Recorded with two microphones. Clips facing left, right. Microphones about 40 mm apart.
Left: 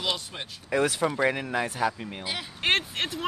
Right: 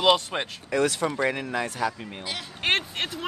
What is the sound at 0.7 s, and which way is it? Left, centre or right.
Speech, centre.